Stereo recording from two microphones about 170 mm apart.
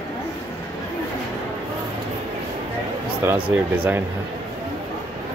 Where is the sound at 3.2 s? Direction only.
10° right (ahead or behind).